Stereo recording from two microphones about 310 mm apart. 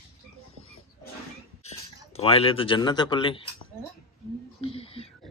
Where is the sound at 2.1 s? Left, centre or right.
Centre.